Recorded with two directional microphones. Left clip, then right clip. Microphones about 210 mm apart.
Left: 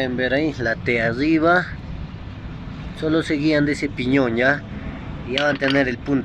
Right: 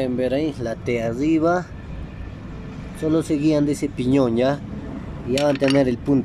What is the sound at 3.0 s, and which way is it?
Speech, 15° right (ahead or behind).